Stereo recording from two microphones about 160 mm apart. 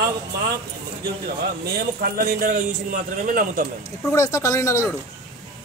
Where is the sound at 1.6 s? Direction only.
75° right (ahead or behind).